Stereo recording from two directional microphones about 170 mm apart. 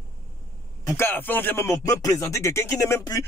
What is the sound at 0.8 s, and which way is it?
Speech, 15° left (ahead or behind).